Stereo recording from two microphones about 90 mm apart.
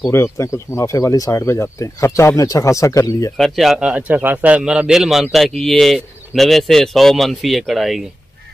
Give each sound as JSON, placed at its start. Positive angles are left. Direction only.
{"t": 0.1, "sound": "speech", "side_deg": 35}
{"t": 3.3, "sound": "a man's voice", "side_deg": 0}